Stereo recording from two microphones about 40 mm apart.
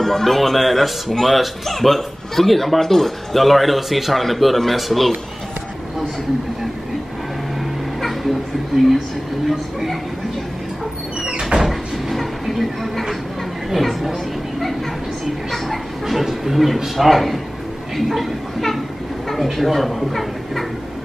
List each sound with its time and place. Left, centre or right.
0.0 s speech: centre
8.0 s cat: centre
9.5 s speech: centre
11.2 s cupboard open or close: centre
11.6 s door: centre
13.7 s a sound: centre
15.5 s a sound: centre
17.9 s speech: centre